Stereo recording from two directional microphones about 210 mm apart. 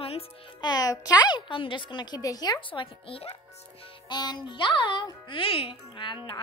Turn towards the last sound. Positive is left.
turn(degrees=25)  # may be behind; listen again after turning